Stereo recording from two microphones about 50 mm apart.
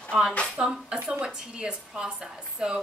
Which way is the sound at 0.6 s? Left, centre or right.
Centre.